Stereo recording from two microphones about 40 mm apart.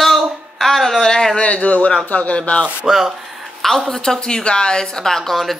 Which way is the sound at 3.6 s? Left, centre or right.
Centre.